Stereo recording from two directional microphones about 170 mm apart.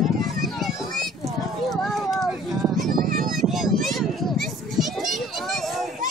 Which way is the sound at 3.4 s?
Centre (ahead or behind).